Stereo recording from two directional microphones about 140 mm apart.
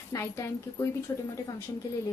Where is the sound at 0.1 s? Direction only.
20° left (ahead or behind).